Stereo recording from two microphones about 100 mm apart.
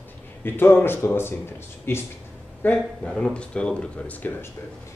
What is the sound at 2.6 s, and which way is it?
Speech, 10° left (ahead or behind).